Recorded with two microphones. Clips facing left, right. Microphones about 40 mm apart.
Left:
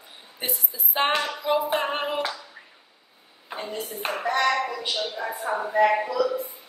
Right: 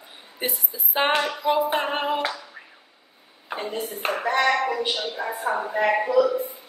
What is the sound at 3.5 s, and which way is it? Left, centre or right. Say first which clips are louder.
Speech: right 3 dB; centre.